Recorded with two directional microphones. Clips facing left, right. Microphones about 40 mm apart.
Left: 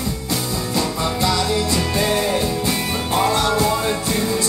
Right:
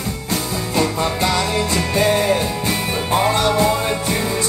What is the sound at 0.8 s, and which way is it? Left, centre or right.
Music, right.